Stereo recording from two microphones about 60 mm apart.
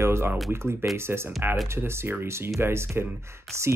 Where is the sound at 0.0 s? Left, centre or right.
Right.